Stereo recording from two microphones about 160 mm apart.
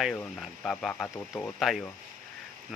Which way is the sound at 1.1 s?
20° left (ahead or behind).